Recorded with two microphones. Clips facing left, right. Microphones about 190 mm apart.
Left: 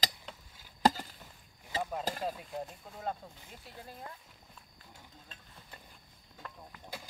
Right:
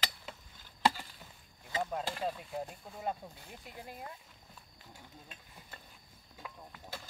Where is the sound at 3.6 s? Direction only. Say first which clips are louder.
Right 1 dB; 15° right (ahead or behind).